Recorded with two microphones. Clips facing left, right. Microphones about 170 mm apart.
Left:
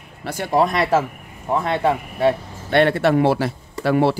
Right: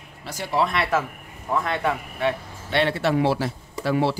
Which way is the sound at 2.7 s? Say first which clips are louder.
Left 6 dB; 55° left (ahead or behind).